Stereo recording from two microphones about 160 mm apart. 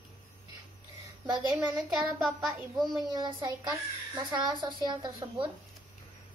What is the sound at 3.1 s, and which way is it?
A child's voice, 25° right (ahead or behind).